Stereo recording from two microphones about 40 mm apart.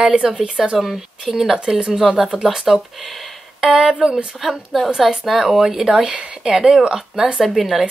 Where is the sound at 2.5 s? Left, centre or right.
Centre.